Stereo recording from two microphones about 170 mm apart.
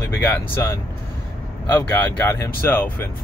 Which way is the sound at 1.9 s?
15° left (ahead or behind).